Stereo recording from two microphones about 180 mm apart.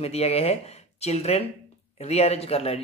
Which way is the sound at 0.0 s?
35° left (ahead or behind).